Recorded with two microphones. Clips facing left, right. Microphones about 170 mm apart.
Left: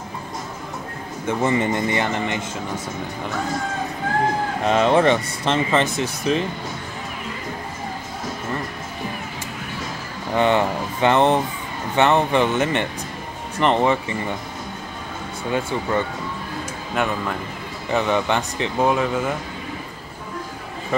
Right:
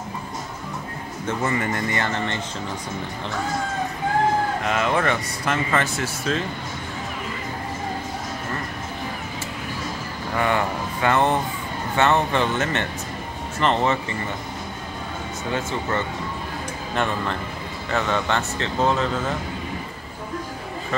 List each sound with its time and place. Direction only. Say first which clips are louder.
1.2 s speech: left 4 dB; 20° left (ahead or behind)
4.6 s speech: left 9 dB; 30° left (ahead or behind)
10.3 s speech: left 4 dB; 20° left (ahead or behind)
16.9 s speech: left 1 dB; 5° left (ahead or behind)